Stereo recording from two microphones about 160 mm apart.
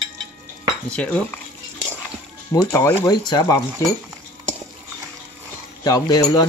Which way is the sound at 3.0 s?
30° left (ahead or behind).